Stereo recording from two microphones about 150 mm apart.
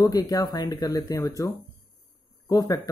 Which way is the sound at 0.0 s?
25° left (ahead or behind).